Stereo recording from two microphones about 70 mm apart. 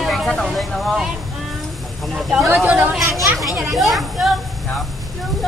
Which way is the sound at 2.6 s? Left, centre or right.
Right.